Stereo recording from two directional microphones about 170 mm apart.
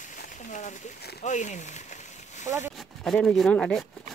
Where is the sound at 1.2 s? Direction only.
45° left (ahead or behind).